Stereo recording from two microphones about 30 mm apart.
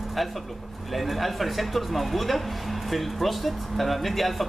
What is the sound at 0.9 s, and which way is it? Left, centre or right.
Speech, centre.